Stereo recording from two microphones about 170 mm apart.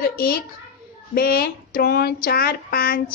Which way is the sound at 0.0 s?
60° left (ahead or behind).